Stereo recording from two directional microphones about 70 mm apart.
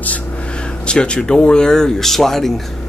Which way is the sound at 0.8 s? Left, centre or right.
Centre.